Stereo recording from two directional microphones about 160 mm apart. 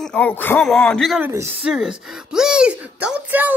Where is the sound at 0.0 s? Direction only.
10° left (ahead or behind).